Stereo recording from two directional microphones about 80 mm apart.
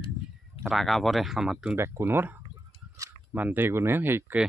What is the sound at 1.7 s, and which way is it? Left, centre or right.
Speech, right.